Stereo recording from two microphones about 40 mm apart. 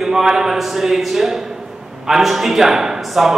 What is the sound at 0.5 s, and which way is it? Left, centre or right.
Speech, centre.